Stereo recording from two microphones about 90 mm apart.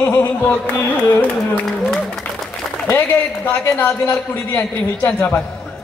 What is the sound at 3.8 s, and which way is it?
Speech, 30° left (ahead or behind).